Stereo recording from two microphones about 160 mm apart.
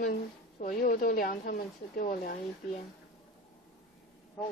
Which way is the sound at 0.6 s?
60° left (ahead or behind).